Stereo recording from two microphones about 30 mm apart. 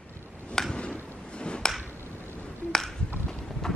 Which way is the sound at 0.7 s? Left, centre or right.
Left.